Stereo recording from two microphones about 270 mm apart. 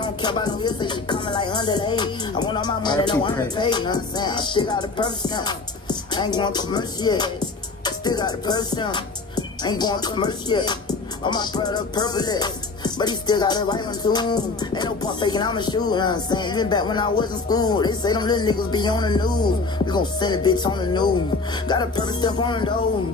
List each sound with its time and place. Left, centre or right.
0.0 s music: centre